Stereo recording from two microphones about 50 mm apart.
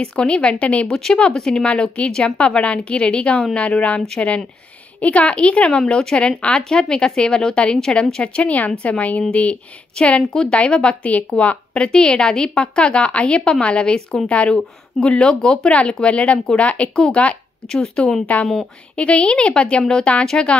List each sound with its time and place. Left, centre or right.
0.0 s speech: centre
0.8 s speech: centre
5.0 s speech: left
18.2 s speech: left